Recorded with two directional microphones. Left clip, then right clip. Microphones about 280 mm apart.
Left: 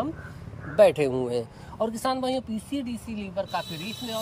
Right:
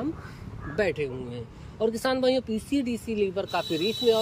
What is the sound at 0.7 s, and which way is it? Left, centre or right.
Speech, centre.